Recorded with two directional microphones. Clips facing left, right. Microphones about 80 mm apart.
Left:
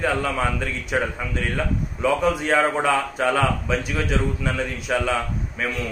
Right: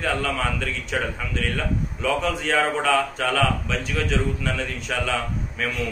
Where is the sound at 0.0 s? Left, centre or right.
Centre.